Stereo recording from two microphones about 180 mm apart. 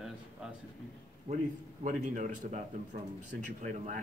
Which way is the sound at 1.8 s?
45° right (ahead or behind).